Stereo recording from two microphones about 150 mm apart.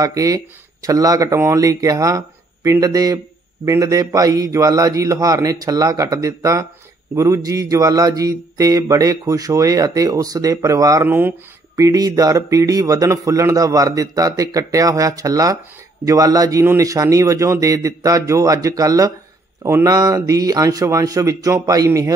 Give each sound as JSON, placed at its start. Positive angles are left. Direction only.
{"t": 0.0, "sound": "mantra", "side_deg": -25}